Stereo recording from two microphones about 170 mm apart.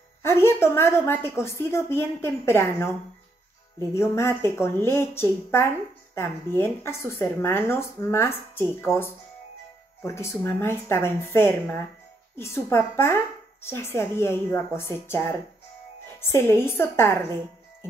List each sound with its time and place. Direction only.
0.2 s a woman's voice: 15° left (ahead or behind)